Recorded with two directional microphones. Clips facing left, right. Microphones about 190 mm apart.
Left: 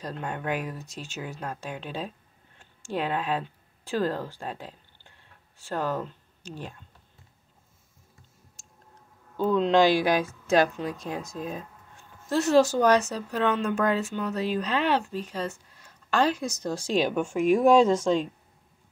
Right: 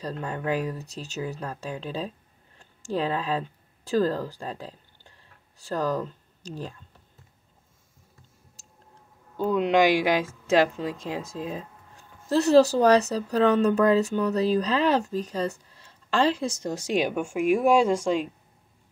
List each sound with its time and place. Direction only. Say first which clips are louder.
0.0 s speech: right 2 dB; 35° right (ahead or behind)
9.4 s speech: even; 10° right (ahead or behind)